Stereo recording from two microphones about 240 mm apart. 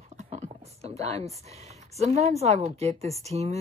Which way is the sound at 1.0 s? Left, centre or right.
Centre.